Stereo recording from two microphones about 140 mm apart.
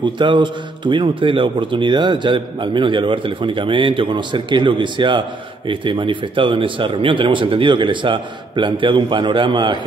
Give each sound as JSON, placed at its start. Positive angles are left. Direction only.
{"t": 0.0, "sound": "a man's voice", "side_deg": -35}